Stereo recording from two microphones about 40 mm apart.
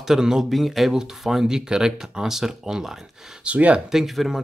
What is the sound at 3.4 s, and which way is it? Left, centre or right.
Speech, right.